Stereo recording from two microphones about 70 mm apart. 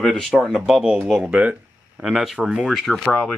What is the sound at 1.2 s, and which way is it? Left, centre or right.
Speech, right.